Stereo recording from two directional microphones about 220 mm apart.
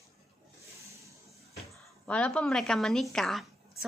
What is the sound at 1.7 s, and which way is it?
A woman's voice, 5° left (ahead or behind).